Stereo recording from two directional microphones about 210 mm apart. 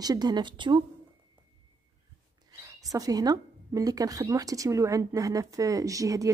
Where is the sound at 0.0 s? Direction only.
20° right (ahead or behind).